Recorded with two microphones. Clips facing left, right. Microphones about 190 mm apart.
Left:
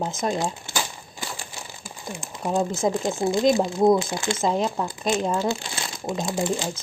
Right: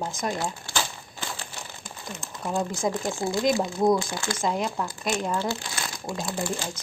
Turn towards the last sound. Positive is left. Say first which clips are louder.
# left 5 dB
turn(degrees=20)  # may be behind; listen again after turning